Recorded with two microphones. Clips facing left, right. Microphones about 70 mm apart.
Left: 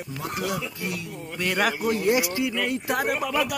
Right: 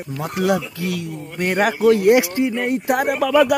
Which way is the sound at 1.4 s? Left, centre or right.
Right.